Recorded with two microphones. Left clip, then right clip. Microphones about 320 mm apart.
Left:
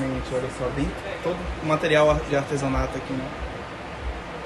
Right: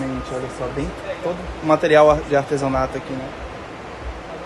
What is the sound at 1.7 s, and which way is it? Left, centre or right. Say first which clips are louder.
A man's voice: right 6 dB; centre.